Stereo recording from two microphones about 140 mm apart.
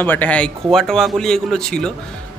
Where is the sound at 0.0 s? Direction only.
15° left (ahead or behind).